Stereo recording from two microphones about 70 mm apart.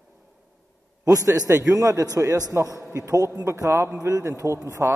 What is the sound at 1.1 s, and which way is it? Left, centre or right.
A man's voice, right.